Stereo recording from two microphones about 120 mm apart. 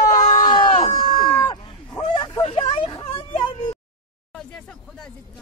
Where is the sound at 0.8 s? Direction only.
45° left (ahead or behind).